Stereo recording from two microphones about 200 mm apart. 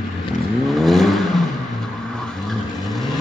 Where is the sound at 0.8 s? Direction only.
Centre (ahead or behind).